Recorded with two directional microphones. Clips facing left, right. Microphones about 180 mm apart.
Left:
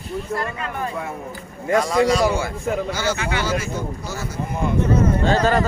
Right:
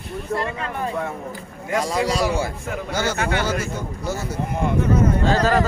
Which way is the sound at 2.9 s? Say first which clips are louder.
Right 1 dB; 55° right (ahead or behind).